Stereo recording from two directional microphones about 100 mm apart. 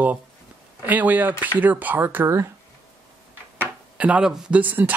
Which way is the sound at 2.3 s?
30° right (ahead or behind).